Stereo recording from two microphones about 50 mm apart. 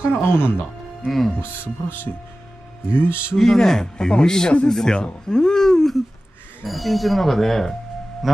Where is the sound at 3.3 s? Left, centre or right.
Centre.